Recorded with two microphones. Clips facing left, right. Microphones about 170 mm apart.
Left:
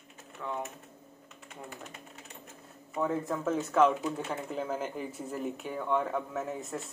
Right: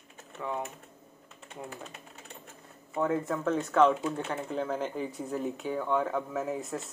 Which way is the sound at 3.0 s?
Centre (ahead or behind).